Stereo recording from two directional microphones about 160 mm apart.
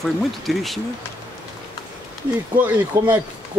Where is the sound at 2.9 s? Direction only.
20° right (ahead or behind).